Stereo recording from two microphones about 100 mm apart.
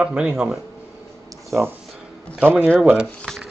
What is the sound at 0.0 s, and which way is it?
Speech, 10° right (ahead or behind).